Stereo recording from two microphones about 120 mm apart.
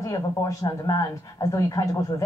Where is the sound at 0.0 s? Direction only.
25° left (ahead or behind).